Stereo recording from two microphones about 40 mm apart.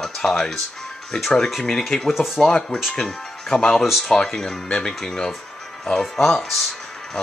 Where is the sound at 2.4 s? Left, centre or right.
Centre.